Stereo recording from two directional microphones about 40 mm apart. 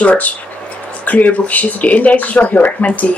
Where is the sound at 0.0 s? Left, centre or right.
Left.